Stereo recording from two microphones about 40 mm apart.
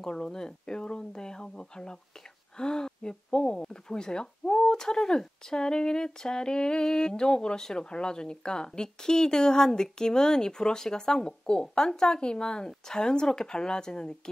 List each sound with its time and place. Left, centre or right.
0.0 s speech: centre